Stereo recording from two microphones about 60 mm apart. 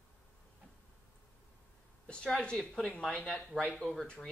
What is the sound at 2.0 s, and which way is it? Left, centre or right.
Speech, centre.